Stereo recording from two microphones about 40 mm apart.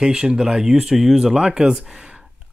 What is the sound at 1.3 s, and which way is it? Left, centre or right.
Speech, right.